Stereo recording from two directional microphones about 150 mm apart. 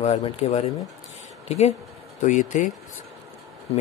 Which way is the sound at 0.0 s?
45° left (ahead or behind).